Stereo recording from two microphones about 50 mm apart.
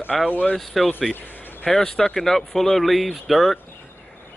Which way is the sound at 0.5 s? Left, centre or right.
Centre.